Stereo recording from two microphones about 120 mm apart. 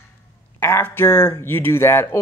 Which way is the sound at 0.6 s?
15° left (ahead or behind).